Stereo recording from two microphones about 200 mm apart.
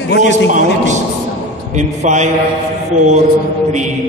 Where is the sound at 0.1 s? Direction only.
60° left (ahead or behind).